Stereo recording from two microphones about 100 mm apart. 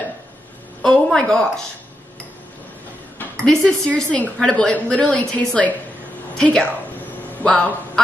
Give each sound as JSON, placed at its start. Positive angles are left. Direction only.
{"t": 0.8, "sound": "a woman's voice", "side_deg": 5}
{"t": 3.3, "sound": "a woman's voice", "side_deg": 5}